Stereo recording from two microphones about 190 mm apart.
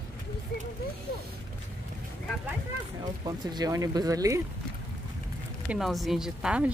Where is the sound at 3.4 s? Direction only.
20° right (ahead or behind).